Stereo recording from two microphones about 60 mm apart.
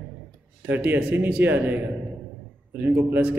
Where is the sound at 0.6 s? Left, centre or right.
Right.